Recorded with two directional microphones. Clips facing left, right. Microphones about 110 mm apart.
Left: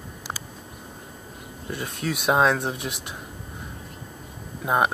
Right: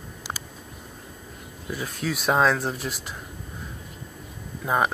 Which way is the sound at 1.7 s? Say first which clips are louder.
Even; centre (ahead or behind).